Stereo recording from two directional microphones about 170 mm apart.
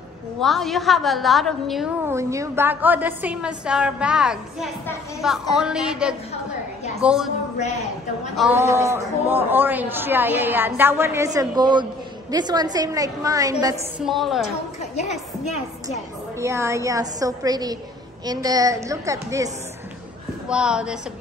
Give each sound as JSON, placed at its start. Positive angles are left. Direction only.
{"t": 0.4, "sound": "a woman's voice", "side_deg": 0}
{"t": 2.0, "sound": "a woman's voice", "side_deg": -15}
{"t": 7.5, "sound": "a woman's voice", "side_deg": 40}
{"t": 8.4, "sound": "a woman's voice", "side_deg": -10}
{"t": 13.9, "sound": "a woman's voice", "side_deg": 0}
{"t": 14.8, "sound": "a woman's voice", "side_deg": 40}
{"t": 16.3, "sound": "a woman's voice", "side_deg": -15}
{"t": 20.4, "sound": "a woman's voice", "side_deg": -5}